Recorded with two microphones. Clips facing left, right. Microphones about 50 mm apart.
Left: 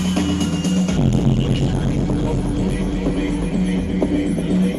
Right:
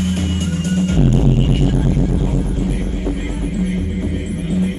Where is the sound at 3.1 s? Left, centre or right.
Left.